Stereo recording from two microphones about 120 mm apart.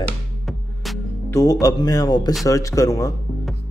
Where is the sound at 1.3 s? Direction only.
30° left (ahead or behind).